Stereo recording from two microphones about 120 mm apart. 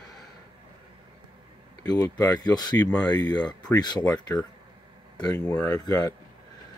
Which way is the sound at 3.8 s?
35° left (ahead or behind).